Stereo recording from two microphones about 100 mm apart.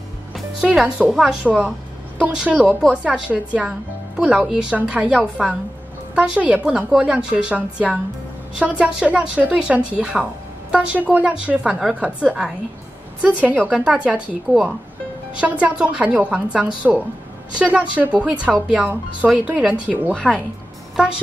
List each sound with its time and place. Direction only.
0.6 s a woman's voice: 10° right (ahead or behind)
20.2 s speech: 5° left (ahead or behind)